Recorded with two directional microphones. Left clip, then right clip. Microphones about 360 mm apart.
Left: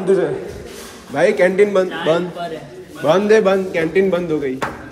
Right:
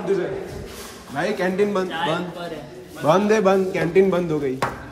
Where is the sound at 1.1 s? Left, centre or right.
Centre.